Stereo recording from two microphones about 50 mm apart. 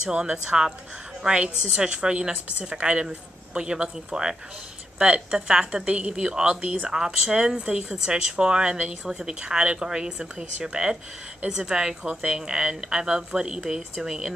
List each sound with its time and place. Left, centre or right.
0.1 s a woman's voice: centre
6.9 s a woman's voice: centre
8.7 s speech: right
9.2 s a woman's voice: centre